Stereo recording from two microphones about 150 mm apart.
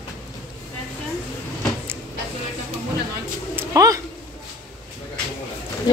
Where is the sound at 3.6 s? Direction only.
20° right (ahead or behind).